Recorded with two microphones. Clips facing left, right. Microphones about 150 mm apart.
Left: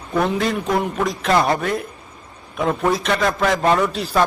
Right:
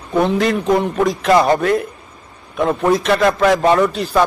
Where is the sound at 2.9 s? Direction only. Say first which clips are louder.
Right 7 dB; centre (ahead or behind).